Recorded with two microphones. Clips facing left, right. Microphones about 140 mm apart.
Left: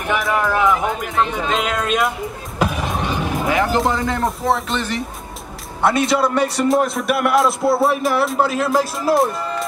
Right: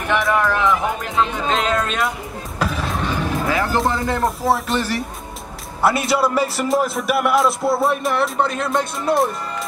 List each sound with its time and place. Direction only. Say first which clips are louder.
0.1 s speech: right 1 dB; 10° left (ahead or behind)
2.6 s music: left 2 dB; 15° left (ahead or behind)
3.8 s a man's voice: even; centre (ahead or behind)
4.7 s speech: right 1 dB; 20° left (ahead or behind)
5.8 s a man's voice: left 1 dB; 5° right (ahead or behind)